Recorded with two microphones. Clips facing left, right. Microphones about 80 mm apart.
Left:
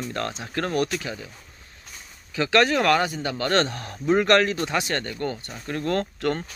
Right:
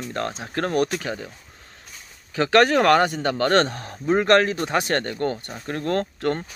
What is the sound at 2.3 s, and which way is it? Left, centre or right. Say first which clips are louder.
Speech: right 3 dB; right.